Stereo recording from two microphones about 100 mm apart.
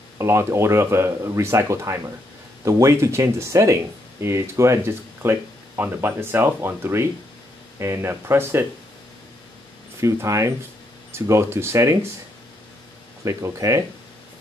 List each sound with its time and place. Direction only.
0.2 s speech: 25° right (ahead or behind)
9.9 s speech: 30° right (ahead or behind)
13.2 s speech: 35° right (ahead or behind)